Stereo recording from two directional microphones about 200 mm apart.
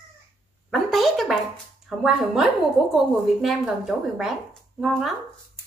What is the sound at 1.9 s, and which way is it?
A woman's voice, centre (ahead or behind).